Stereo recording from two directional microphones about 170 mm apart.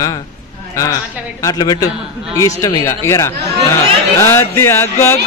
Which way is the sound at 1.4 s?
20° left (ahead or behind).